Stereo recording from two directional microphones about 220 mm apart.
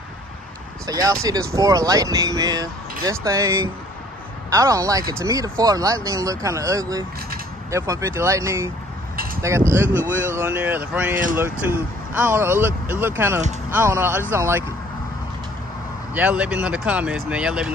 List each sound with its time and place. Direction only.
0.8 s speech: 15° right (ahead or behind)
9.1 s a sound: 40° right (ahead or behind)
9.4 s speech: 10° right (ahead or behind)
16.2 s speech: 5° right (ahead or behind)